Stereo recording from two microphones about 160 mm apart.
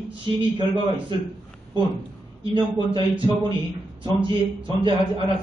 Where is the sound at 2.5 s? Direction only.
30° right (ahead or behind).